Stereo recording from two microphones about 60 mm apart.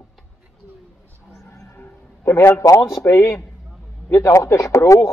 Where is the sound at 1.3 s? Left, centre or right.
Left.